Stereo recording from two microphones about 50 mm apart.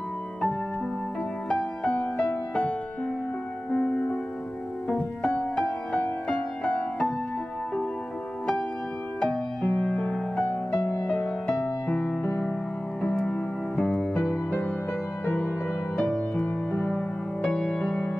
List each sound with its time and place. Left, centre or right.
1.5 s music: left
3.8 s music: centre
4.9 s music: left
9.2 s music: centre
13.7 s music: centre
15.2 s music: left
16.0 s music: centre